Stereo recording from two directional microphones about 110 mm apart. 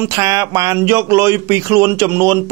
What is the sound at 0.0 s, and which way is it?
Speech, 30° right (ahead or behind).